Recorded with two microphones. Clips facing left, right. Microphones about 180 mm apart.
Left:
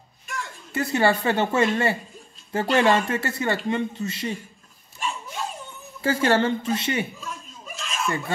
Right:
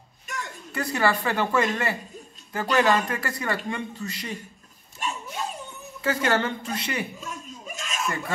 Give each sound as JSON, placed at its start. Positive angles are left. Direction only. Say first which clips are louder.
{"t": 0.7, "sound": "speech", "louder": "left 3 dB", "side_deg": 25}
{"t": 5.9, "sound": "speech", "louder": "left 3 dB", "side_deg": 30}
{"t": 7.2, "sound": "chuckle", "louder": "even", "side_deg": -45}